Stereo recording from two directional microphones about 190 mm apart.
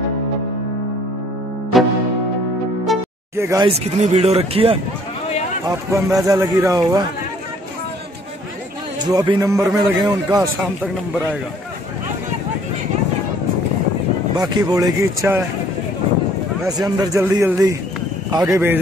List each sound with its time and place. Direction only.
1.7 s music: centre (ahead or behind)
2.9 s music: centre (ahead or behind)
3.3 s a man's voice: 20° right (ahead or behind)
3.7 s speech: 35° right (ahead or behind)
5.7 s a man's voice: 15° right (ahead or behind)
9.0 s a man's voice: 20° right (ahead or behind)
14.3 s speech: 20° right (ahead or behind)
16.6 s a man's voice: 20° right (ahead or behind)